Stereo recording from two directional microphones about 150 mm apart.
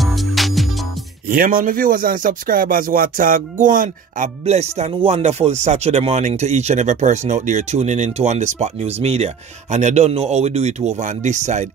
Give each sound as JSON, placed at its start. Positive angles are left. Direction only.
{"t": 0.0, "sound": "music", "side_deg": 0}
{"t": 1.3, "sound": "speech", "side_deg": -75}
{"t": 4.5, "sound": "speech", "side_deg": -45}